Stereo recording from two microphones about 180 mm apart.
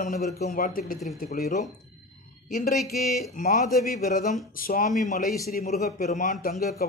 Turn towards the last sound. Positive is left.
turn(degrees=45)  # may be behind; listen again after turning